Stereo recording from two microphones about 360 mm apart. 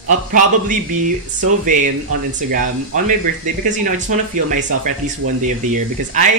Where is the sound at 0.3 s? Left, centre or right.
Right.